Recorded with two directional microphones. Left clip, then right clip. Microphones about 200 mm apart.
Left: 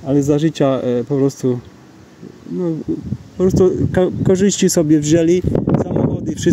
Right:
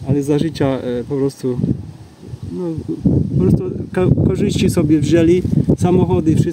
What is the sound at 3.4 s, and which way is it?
Speech, 35° left (ahead or behind).